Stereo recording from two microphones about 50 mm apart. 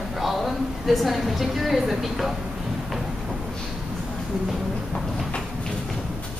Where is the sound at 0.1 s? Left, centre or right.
Centre.